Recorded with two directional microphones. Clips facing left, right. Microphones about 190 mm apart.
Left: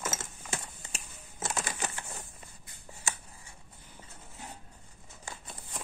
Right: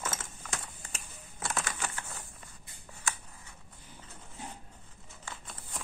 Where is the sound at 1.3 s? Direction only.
20° left (ahead or behind).